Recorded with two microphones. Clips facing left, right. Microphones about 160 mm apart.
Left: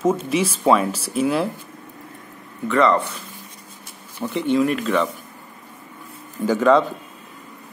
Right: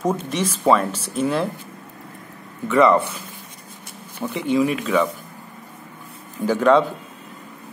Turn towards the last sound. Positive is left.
turn(degrees=0)  # may be behind; listen again after turning